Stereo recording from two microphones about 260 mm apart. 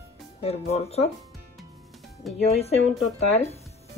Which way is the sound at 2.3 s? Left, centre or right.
Left.